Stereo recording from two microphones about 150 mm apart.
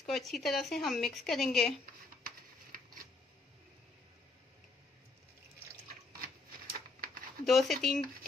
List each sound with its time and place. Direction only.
0.0 s speech: centre (ahead or behind)
6.2 s typewriter: 80° right
7.4 s speech: centre (ahead or behind)